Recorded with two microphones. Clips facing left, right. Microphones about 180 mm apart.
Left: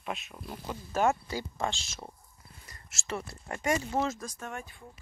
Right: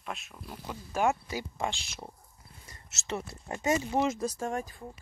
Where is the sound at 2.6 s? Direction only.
20° right (ahead or behind).